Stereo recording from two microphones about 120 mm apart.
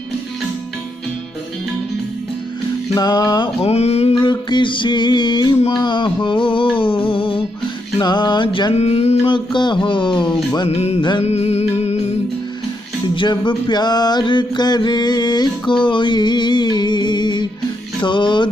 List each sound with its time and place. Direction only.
2.9 s mantra: 35° left (ahead or behind)
3.6 s mantra: 60° left (ahead or behind)
4.2 s mantra: 40° left (ahead or behind)
5.7 s a sound: 40° left (ahead or behind)
6.8 s music: 40° left (ahead or behind)
8.0 s mantra: 40° left (ahead or behind)
8.7 s mantra: 60° left (ahead or behind)
9.3 s mantra: 40° left (ahead or behind)
10.7 s mantra: 60° left (ahead or behind)
11.0 s mantra: 40° left (ahead or behind)
11.2 s music: 65° left (ahead or behind)
13.1 s mantra: 40° left (ahead or behind)